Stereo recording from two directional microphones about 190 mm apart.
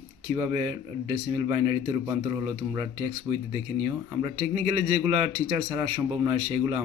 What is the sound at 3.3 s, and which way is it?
Speech, 10° right (ahead or behind).